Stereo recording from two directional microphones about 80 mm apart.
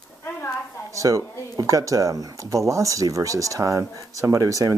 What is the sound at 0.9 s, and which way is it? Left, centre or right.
Speech, right.